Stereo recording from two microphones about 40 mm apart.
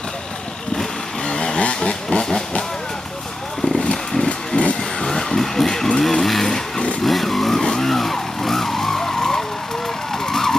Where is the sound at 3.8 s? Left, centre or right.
Left.